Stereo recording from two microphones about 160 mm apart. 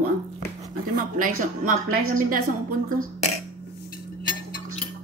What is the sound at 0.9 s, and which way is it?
A woman's voice, 55° right (ahead or behind).